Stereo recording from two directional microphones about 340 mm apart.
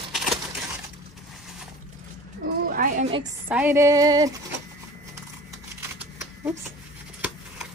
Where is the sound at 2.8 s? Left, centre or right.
Right.